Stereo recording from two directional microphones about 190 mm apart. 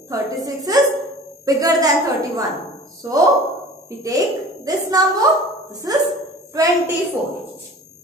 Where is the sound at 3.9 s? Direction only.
15° right (ahead or behind).